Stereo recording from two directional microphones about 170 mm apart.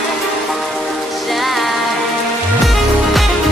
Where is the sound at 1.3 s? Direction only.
Centre (ahead or behind).